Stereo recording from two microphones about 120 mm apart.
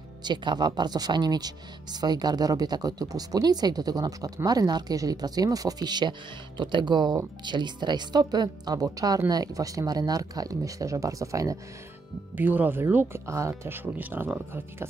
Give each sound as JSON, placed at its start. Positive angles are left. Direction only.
{"t": 0.2, "sound": "speech", "side_deg": -40}
{"t": 12.4, "sound": "speech", "side_deg": -15}